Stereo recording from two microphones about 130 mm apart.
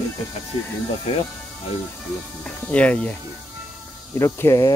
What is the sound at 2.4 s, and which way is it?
Speech, 10° left (ahead or behind).